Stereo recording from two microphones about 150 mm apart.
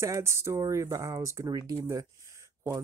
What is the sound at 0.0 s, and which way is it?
Speech, 20° right (ahead or behind).